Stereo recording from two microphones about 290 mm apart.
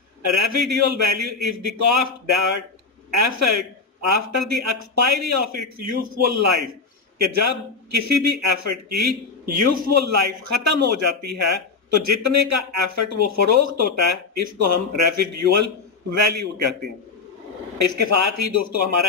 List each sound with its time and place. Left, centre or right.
0.2 s a man's voice: right
17.7 s speech: right